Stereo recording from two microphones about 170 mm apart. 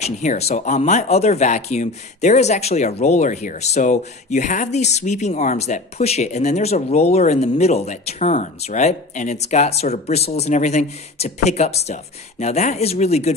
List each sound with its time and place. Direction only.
0.0 s speech: 45° left (ahead or behind)